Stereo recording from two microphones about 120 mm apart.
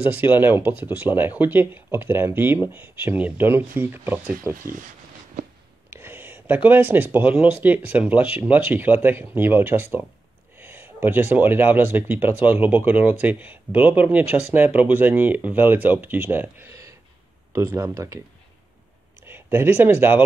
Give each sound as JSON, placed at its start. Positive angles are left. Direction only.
{"t": 0.1, "sound": "speech", "side_deg": -15}
{"t": 5.9, "sound": "speech", "side_deg": -20}
{"t": 19.2, "sound": "speech", "side_deg": -20}